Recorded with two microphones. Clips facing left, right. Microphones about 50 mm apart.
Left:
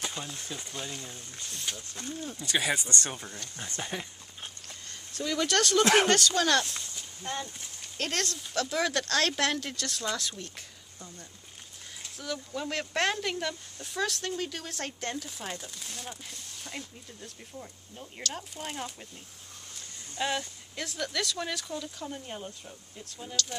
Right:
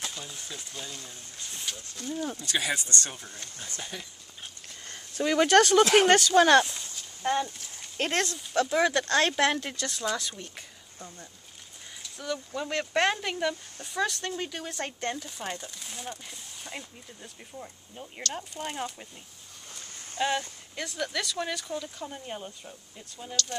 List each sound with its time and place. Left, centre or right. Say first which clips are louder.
0.5 s speech: left 2 dB; centre
2.0 s speech: right 4 dB; left
2.3 s speech: left 6 dB; centre
3.5 s speech: left 4 dB; left
5.2 s speech: right 7 dB; right; by 10.5 s centre
12.2 s speech: right 2 dB; centre
20.2 s speech: right 3 dB; centre